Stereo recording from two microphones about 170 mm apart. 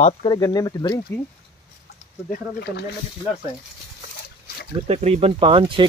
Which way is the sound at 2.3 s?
65° left (ahead or behind).